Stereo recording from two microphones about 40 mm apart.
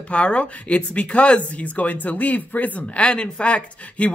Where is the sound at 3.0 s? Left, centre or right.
Left.